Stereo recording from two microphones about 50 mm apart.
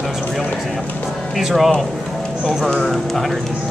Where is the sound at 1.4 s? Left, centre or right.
Centre.